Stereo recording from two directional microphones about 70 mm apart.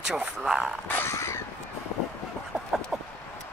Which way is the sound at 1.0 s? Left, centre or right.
Left.